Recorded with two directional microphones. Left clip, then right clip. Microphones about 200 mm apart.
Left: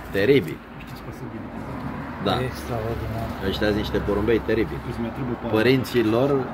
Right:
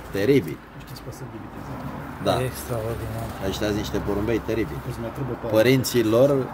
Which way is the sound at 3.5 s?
70° right (ahead or behind).